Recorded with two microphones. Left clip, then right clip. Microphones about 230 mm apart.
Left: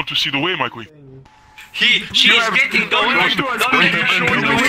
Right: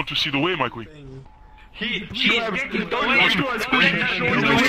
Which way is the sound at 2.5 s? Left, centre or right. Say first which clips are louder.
Left 10 dB; left.